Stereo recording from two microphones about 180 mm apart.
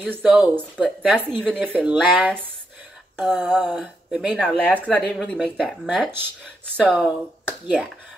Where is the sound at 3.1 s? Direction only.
5° left (ahead or behind).